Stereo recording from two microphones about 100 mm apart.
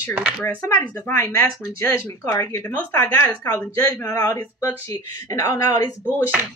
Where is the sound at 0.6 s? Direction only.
35° left (ahead or behind).